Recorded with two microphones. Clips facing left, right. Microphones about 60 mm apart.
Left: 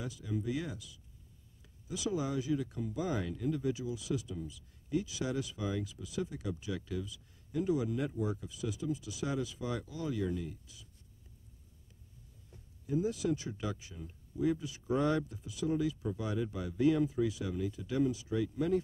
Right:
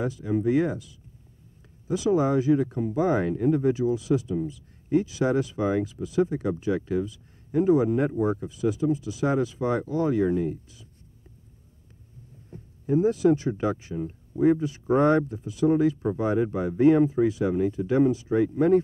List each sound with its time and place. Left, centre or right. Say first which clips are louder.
0.0 s speech: right 13 dB; right
12.4 s speech: right 12 dB; right